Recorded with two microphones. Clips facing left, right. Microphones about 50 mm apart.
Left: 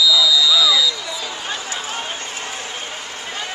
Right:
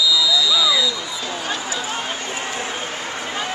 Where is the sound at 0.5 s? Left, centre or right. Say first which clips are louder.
Left 2 dB; centre.